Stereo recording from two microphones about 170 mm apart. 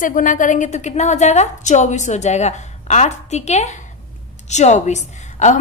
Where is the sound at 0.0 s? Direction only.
50° left (ahead or behind).